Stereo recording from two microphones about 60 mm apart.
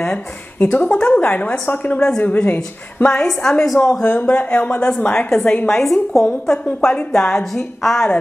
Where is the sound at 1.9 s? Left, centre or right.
Centre.